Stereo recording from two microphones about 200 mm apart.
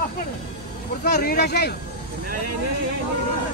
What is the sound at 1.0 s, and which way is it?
Speech, 55° left (ahead or behind).